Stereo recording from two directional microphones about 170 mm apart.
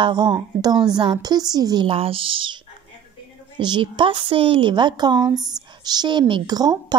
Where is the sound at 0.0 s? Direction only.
25° right (ahead or behind).